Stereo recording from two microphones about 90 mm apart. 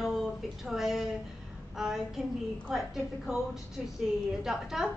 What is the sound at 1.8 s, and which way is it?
A woman's voice, 5° right (ahead or behind).